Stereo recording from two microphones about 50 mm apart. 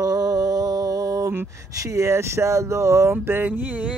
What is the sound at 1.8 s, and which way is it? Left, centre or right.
Speech, right.